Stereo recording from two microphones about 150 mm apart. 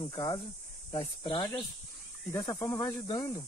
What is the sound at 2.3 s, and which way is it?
Speech, 20° left (ahead or behind).